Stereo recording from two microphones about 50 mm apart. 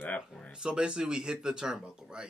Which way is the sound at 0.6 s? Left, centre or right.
Centre.